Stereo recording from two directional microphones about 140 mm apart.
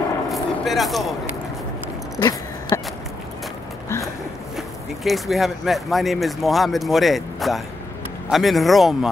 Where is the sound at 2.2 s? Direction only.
30° left (ahead or behind).